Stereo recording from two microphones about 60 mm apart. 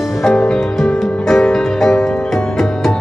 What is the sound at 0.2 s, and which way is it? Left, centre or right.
Music, centre.